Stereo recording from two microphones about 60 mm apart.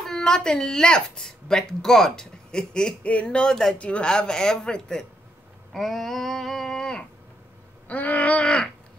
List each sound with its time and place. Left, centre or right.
0.0 s a woman's voice: centre
5.7 s a sound: centre
7.9 s wail: left